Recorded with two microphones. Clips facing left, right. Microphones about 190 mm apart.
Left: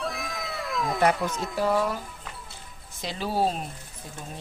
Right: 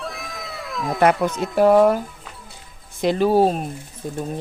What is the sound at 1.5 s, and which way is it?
A man's voice, 60° right (ahead or behind).